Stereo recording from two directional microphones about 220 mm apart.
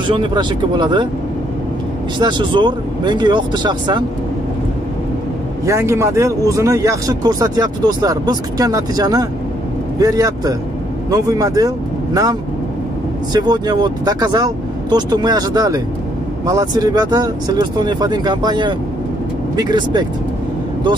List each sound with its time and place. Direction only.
0.1 s speech: 20° right (ahead or behind)
2.1 s speech: 20° right (ahead or behind)
5.7 s speech: 15° right (ahead or behind)